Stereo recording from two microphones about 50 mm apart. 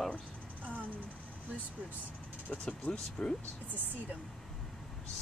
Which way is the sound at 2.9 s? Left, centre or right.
Centre.